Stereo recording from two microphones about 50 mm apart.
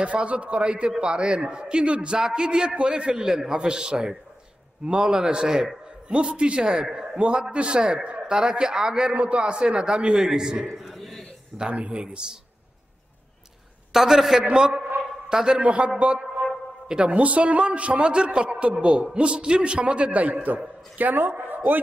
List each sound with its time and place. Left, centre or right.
0.0 s a man's voice: right
10.8 s a sound: centre
11.5 s a man's voice: centre
13.9 s a man's voice: centre
15.0 s dog: centre
16.0 s a man's voice: right